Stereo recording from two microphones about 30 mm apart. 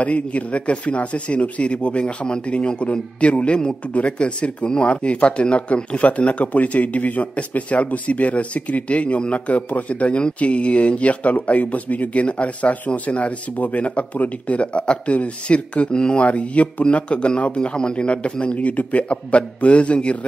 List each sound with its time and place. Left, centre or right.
0.0 s speech: left
6.0 s speech: left
15.9 s speech: left
16.2 s speech: left
17.6 s speech: left
18.7 s speech: left